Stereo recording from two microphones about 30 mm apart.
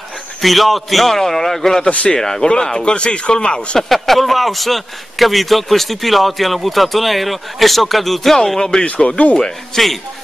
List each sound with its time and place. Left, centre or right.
0.4 s a man's voice: centre
2.8 s speech: left
3.9 s a man's voice: centre
8.5 s speech: left
9.0 s speech: left
9.7 s a man's voice: centre